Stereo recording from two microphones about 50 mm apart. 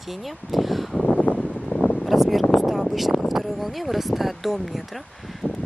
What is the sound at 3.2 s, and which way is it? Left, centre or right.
Speech, centre.